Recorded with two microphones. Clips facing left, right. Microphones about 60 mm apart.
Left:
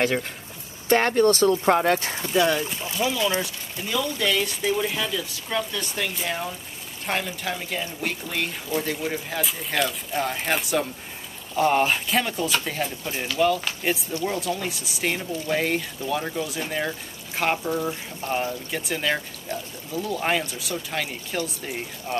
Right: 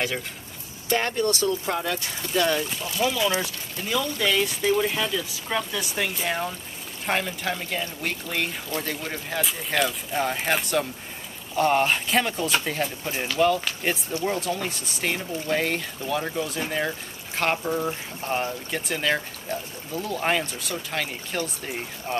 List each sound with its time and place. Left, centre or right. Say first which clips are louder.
0.8 s speech: left 5 dB; left
2.1 s speech: left 2 dB; centre